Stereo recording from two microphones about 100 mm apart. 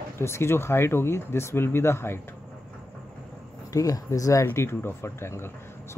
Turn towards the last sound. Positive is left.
turn(degrees=25)  # may be behind; listen again after turning